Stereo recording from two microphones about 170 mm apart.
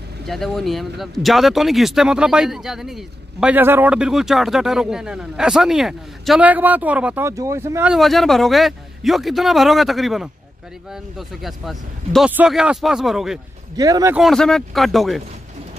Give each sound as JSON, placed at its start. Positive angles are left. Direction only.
{"t": 0.3, "sound": "speech", "side_deg": 0}
{"t": 7.9, "sound": "speech", "side_deg": 0}
{"t": 13.7, "sound": "speech", "side_deg": -20}
{"t": 14.1, "sound": "speech", "side_deg": 0}